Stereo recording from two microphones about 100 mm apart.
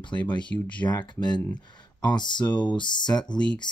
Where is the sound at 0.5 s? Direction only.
20° left (ahead or behind).